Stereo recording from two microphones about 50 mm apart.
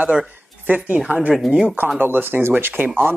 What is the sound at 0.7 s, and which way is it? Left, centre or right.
Speech, right.